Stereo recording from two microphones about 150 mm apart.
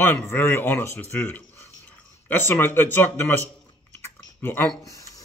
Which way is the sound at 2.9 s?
15° left (ahead or behind).